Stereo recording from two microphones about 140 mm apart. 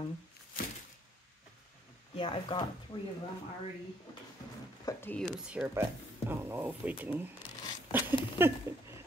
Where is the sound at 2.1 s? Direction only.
40° left (ahead or behind).